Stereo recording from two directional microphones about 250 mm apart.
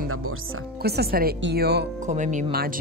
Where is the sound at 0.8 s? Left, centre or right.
Right.